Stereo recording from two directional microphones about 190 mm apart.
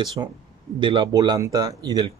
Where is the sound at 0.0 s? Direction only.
25° right (ahead or behind).